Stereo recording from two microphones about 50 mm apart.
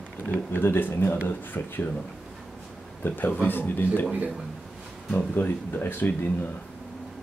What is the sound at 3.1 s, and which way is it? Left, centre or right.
Speech, left.